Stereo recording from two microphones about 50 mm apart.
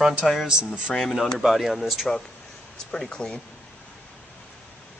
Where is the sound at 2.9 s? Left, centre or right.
Centre.